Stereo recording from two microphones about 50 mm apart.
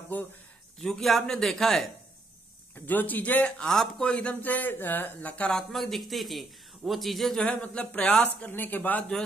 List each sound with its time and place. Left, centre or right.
0.1 s speech: left
0.7 s speech: centre
2.7 s speech: left
3.5 s speech: centre
4.1 s speech: left
4.4 s speech: left
5.5 s speech: centre
7.4 s speech: left
8.5 s speech: left